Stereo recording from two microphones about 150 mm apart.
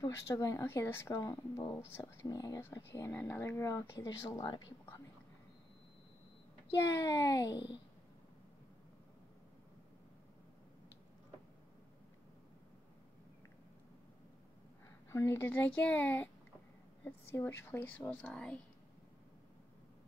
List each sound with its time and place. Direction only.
0.0 s speech: 20° left (ahead or behind)
6.9 s speech: 20° left (ahead or behind)
15.0 s a woman's voice: 20° left (ahead or behind)